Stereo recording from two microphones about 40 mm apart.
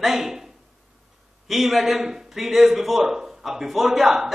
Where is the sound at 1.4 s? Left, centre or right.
Centre.